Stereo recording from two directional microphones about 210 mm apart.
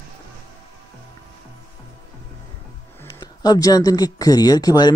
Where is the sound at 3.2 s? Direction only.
20° left (ahead or behind).